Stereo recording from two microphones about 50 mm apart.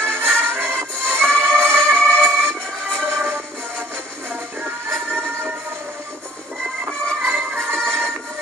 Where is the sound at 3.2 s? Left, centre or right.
Right.